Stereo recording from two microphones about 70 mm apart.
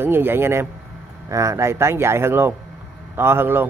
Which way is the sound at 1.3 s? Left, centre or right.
Right.